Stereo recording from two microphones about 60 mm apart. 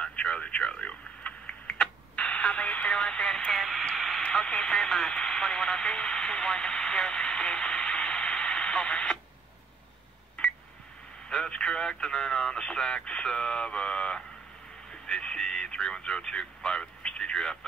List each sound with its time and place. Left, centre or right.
0.0 s typing: centre
3.9 s radio: centre
4.2 s speech: centre
10.4 s telephone dialing: centre
11.2 s speech: centre